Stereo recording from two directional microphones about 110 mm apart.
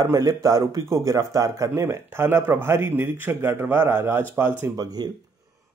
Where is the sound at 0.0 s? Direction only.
30° right (ahead or behind).